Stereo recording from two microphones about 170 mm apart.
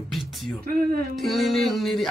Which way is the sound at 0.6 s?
60° right (ahead or behind).